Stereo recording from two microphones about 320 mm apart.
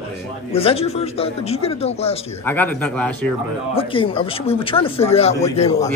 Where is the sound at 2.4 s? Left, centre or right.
Centre.